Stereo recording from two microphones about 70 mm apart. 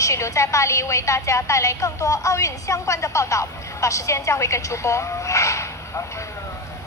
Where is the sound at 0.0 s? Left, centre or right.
Left.